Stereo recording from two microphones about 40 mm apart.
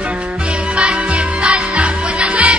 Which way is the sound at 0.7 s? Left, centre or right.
Right.